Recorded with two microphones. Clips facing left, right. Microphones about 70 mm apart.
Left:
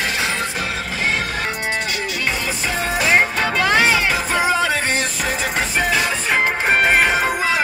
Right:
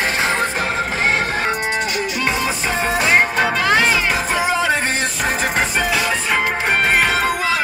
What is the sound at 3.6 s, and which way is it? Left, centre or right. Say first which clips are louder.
Music: left 2 dB; centre.